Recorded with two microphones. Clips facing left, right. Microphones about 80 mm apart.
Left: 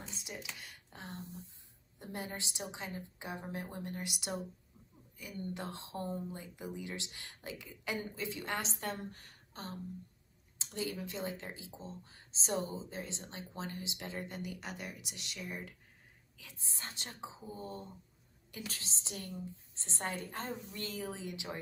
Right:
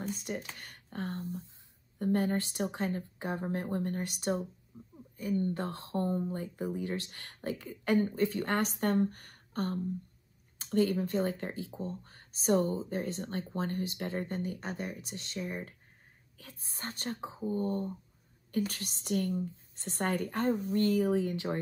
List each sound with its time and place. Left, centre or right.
0.0 s speech: right
4.7 s a sound: centre
5.1 s a woman's voice: right
16.3 s a woman's voice: right
20.8 s speech: right
21.1 s speech: right